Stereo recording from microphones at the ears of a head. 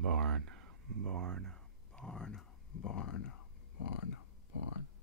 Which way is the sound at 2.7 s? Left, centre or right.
Left.